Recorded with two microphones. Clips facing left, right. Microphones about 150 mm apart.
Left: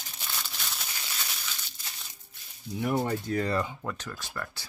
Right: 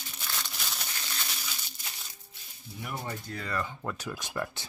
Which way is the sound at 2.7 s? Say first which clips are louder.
Left 10 dB; 50° left (ahead or behind).